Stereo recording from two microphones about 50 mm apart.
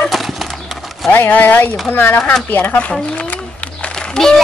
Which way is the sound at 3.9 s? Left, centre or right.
Centre.